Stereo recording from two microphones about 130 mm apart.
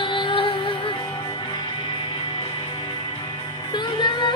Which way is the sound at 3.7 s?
35° left (ahead or behind).